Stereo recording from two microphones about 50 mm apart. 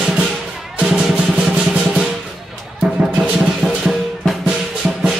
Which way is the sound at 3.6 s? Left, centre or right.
Centre.